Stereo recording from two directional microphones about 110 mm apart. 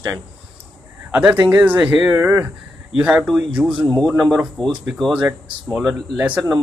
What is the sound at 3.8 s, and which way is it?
Speech, 5° left (ahead or behind).